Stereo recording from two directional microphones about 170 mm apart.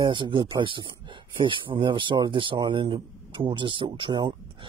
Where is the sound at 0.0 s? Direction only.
30° right (ahead or behind).